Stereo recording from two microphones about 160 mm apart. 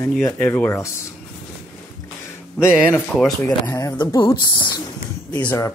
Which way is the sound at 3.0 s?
5° left (ahead or behind).